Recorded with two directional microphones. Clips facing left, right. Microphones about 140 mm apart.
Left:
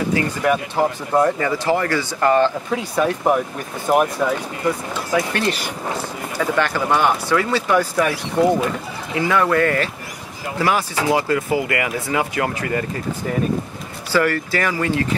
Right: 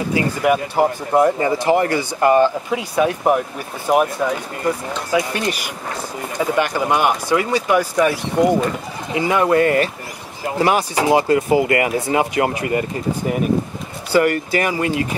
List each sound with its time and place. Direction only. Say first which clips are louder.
0.1 s speech: right 4 dB; 10° right (ahead or behind)
5.4 s speech: left 1 dB; 10° right (ahead or behind)
14.1 s speech: right 3 dB; 20° right (ahead or behind)